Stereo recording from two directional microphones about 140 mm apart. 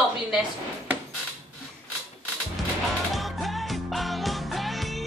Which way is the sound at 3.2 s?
Centre (ahead or behind).